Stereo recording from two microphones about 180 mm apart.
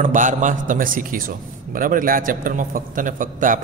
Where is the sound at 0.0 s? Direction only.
45° right (ahead or behind).